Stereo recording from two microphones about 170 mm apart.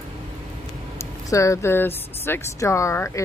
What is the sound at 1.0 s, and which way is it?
Speech, 20° left (ahead or behind).